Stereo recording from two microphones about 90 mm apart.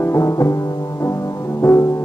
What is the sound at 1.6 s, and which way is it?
Music, 30° left (ahead or behind).